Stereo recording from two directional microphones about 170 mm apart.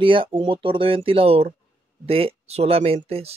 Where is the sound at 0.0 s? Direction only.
30° right (ahead or behind).